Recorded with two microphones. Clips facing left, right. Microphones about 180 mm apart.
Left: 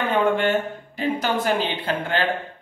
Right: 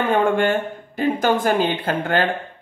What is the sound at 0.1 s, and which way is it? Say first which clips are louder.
Speech: right 1 dB; 45° right (ahead or behind).